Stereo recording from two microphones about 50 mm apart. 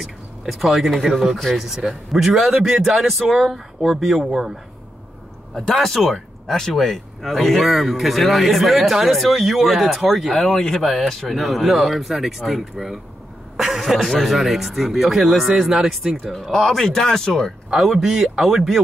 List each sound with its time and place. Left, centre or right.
0.0 s speech: centre
5.5 s speech: centre
16.5 s speech: centre
17.7 s speech: centre